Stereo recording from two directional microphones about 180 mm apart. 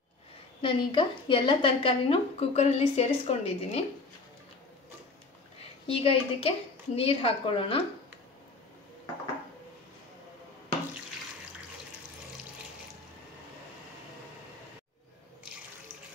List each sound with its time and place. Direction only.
0.6 s a woman's voice: 30° left (ahead or behind)
5.9 s a woman's voice: 30° left (ahead or behind)